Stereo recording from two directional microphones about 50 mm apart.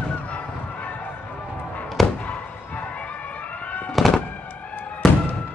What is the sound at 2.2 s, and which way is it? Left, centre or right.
Fireworks, left.